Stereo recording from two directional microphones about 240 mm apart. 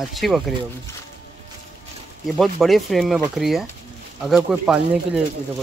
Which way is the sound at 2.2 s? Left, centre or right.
Centre.